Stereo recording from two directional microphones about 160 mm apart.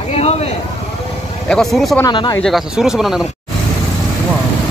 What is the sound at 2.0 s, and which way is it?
Speech, 25° left (ahead or behind).